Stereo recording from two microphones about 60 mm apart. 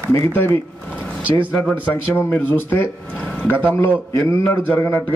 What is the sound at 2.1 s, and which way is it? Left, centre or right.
Speech, left.